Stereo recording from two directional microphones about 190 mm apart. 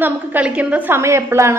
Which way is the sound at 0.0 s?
10° right (ahead or behind).